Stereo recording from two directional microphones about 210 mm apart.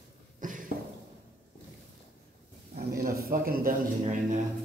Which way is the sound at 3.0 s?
45° right (ahead or behind).